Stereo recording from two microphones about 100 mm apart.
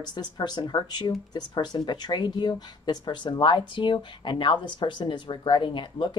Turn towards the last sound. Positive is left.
turn(degrees=50)  # may be behind; listen again after turning